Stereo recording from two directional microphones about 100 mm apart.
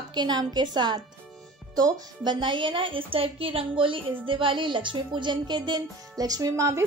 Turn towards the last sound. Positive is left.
turn(degrees=-30)  # may be behind; listen again after turning